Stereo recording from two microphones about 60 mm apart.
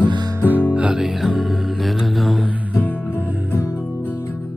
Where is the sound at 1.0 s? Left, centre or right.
Centre.